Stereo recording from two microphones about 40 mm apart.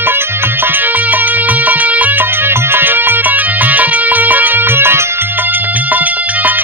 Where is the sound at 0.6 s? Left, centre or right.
Right.